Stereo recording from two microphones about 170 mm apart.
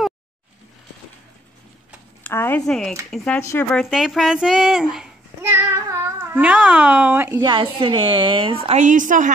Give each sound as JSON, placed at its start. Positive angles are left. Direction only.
{"t": 2.2, "sound": "speech", "side_deg": 10}
{"t": 3.8, "sound": "a child's voice", "side_deg": 0}
{"t": 7.3, "sound": "speech", "side_deg": -25}
{"t": 8.6, "sound": "a woman's voice", "side_deg": -45}